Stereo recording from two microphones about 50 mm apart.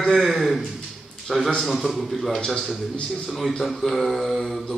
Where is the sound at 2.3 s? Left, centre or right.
Centre.